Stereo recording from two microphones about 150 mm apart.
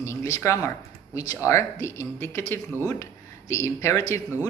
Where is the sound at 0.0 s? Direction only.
20° left (ahead or behind).